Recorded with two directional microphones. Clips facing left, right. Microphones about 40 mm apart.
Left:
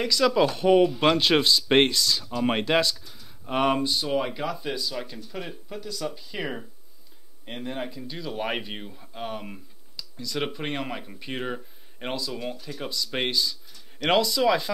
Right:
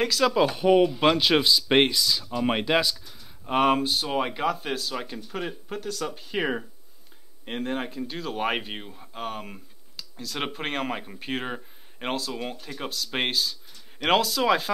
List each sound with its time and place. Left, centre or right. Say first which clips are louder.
0.1 s speech: left 1 dB; centre
4.0 s speech: right 1 dB; right
5.7 s speech: right 3 dB; right
6.0 s speech: right 4 dB; right
8.4 s speech: right 2 dB; centre
12.1 s speech: right 1 dB; right